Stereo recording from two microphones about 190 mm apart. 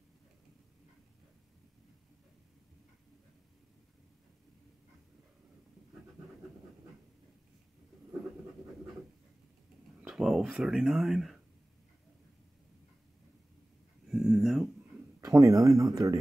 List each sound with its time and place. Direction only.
10.0 s speech: centre (ahead or behind)
14.0 s a sound: centre (ahead or behind)
15.1 s speech: 15° right (ahead or behind)